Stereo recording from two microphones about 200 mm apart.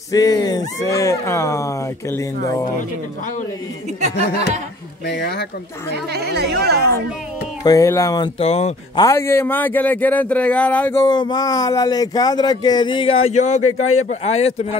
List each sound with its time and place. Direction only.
0.1 s a man's voice: 20° left (ahead or behind)
5.0 s speech: 55° left (ahead or behind)
6.1 s speech: 55° right (ahead or behind)
7.6 s a man's voice: 15° left (ahead or behind)
8.4 s speech: 30° left (ahead or behind)
9.0 s a man's voice: 15° left (ahead or behind); by 13.7 s 35° left (ahead or behind)
13.7 s a man's voice: 90° left
14.0 s speech: 30° left (ahead or behind)